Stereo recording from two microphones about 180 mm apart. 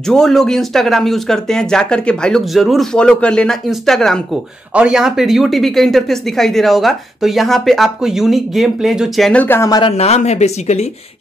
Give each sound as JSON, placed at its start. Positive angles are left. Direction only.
{"t": 0.0, "sound": "speech", "side_deg": 0}
{"t": 9.9, "sound": "speech", "side_deg": 35}